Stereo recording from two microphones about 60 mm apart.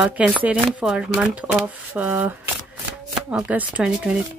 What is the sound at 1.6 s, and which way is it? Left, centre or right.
Speech, right.